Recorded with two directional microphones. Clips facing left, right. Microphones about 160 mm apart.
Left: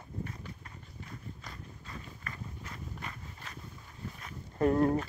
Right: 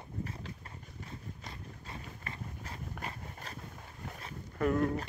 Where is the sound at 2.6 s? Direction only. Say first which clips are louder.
Right 1 dB; 35° right (ahead or behind).